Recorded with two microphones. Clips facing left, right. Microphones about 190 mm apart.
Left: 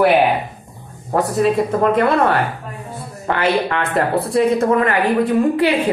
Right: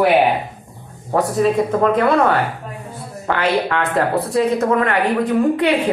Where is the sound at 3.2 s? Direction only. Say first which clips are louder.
Even; 5° left (ahead or behind).